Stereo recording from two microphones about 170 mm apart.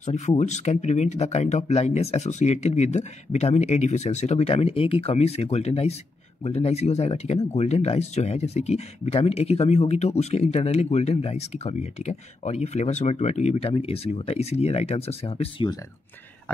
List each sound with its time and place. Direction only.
0.0 s speech: 45° left (ahead or behind); by 15.8 s 30° left (ahead or behind)